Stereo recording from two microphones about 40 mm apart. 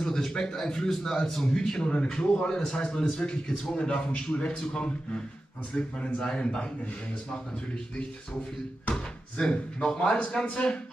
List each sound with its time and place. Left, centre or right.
0.0 s a man's voice: centre
1.9 s a man's voice: left
9.5 s a man's voice: centre
10.4 s a man's voice: left